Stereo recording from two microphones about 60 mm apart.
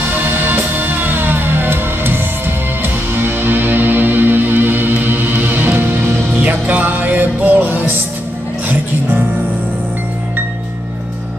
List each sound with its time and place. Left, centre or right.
0.1 s music: right
6.4 s music: right